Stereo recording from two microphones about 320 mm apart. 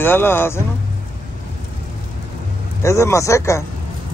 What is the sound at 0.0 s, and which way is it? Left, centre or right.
Speech, centre.